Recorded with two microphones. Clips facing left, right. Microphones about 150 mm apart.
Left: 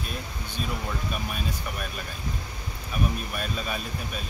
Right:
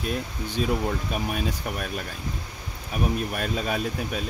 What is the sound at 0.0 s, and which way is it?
Speech, 85° right.